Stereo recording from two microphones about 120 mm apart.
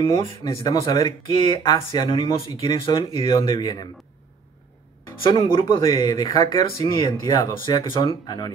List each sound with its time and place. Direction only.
0.0 s speech: 50° left (ahead or behind)
0.7 s speech: 35° left (ahead or behind)
3.6 s speech: 35° left (ahead or behind)
5.2 s speech: 45° left (ahead or behind)
5.9 s speech: 30° left (ahead or behind)